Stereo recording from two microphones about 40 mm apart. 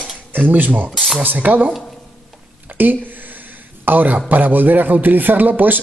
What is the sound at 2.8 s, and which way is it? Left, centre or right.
A man's voice, right.